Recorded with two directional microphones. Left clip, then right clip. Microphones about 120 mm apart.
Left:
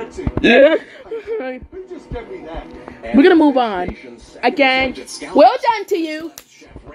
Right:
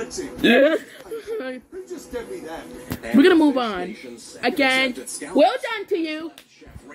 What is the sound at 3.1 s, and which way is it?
A woman's voice, 10° left (ahead or behind).